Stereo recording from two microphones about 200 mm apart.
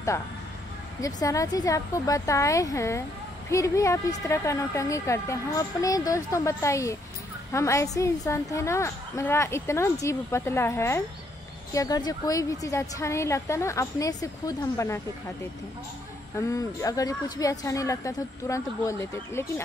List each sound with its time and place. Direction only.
1.0 s a woman's voice: 15° left (ahead or behind)
16.3 s a woman's voice: 15° left (ahead or behind)